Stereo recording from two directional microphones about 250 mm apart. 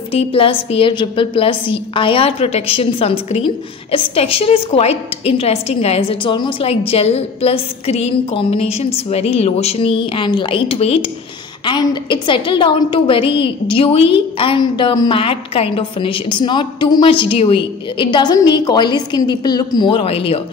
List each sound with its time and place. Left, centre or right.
0.1 s a woman's voice: left